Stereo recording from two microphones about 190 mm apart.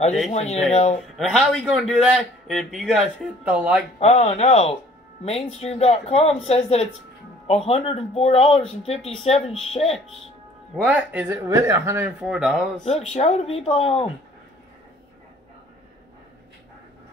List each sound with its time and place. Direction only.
0.3 s speech: 35° left (ahead or behind)
1.1 s a man's voice: centre (ahead or behind)
4.0 s speech: 35° left (ahead or behind)
10.8 s speech: 10° right (ahead or behind)
12.8 s speech: 35° left (ahead or behind)